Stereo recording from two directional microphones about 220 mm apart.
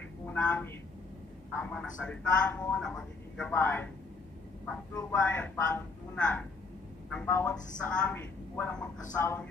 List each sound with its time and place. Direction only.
0.3 s a woman's voice: 5° left (ahead or behind)